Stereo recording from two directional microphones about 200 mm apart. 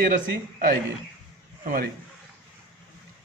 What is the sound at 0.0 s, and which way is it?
A man's voice, 45° right (ahead or behind).